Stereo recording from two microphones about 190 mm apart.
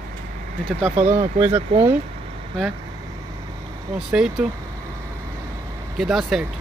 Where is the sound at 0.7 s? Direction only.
35° right (ahead or behind).